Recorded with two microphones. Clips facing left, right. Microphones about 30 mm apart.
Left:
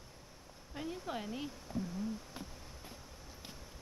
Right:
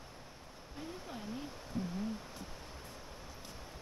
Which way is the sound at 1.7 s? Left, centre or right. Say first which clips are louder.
Right 1 dB; centre.